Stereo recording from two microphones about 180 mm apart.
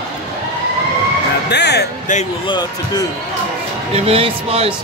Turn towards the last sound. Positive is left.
turn(degrees=-35)  # may be behind; listen again after turning